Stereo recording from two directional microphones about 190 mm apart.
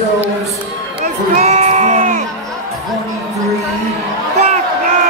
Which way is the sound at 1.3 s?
40° right (ahead or behind).